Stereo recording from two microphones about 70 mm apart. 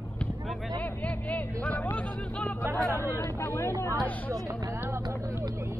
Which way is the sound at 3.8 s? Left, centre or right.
Left.